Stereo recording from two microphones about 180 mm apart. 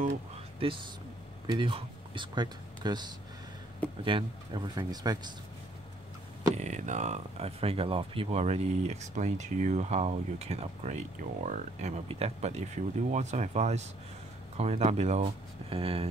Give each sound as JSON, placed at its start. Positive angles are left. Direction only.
{"t": 1.5, "sound": "speech", "side_deg": -30}
{"t": 6.5, "sound": "speech", "side_deg": -40}